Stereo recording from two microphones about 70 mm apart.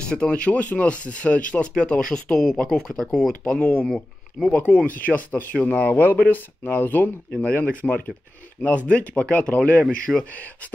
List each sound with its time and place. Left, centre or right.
0.0 s speech: centre